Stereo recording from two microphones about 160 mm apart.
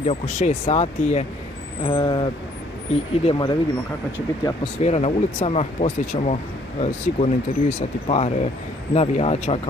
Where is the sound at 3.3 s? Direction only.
25° left (ahead or behind).